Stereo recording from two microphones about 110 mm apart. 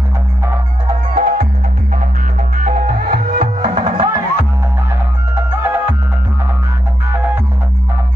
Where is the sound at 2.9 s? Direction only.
70° right (ahead or behind).